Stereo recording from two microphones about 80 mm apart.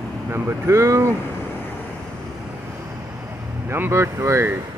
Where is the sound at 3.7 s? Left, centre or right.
Right.